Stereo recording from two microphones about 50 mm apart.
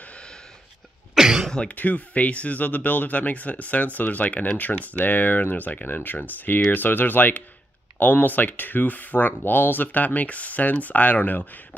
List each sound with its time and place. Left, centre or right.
0.0 s a sound: left
1.1 s cough: centre
1.5 s speech: centre
1.8 s speech: left